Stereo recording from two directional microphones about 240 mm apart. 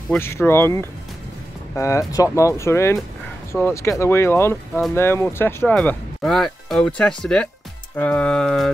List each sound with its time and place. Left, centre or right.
0.1 s speech: centre